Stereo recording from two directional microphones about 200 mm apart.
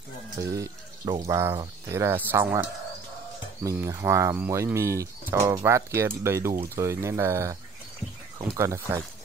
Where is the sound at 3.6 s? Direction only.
15° right (ahead or behind).